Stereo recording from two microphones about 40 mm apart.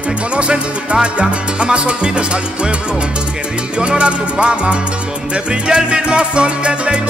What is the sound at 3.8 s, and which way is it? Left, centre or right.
Salsa music, right.